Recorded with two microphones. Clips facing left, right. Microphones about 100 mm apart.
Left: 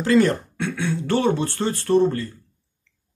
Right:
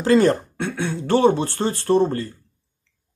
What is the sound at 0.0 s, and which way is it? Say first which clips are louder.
Speech: right 2 dB; 30° right (ahead or behind).